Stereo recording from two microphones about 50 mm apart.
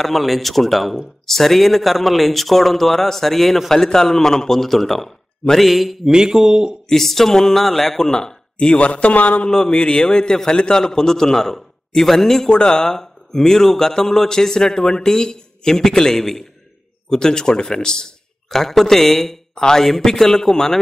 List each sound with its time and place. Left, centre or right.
0.0 s speech: centre
6.0 s speech: centre
6.9 s speech: centre
8.7 s speech: left
9.5 s speech: centre
12.4 s speech: centre